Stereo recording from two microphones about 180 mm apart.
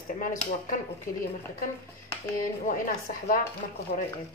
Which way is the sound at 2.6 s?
50° left (ahead or behind).